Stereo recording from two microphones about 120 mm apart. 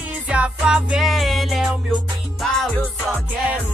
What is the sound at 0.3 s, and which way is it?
Music, 10° right (ahead or behind).